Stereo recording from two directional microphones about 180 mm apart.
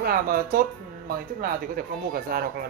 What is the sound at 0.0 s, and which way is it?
Speech, 55° right (ahead or behind).